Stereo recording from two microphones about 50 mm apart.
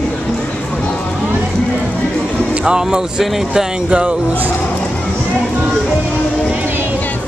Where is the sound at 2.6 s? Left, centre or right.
Centre.